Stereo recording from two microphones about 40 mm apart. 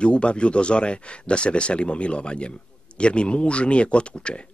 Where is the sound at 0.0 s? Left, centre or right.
Left.